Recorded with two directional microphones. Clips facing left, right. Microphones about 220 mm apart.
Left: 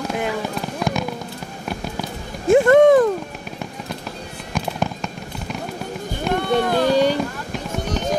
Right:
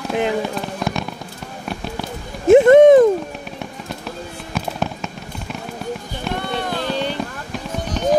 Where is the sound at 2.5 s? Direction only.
20° right (ahead or behind).